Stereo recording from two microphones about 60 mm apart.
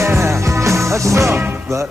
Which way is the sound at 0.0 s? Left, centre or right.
Right.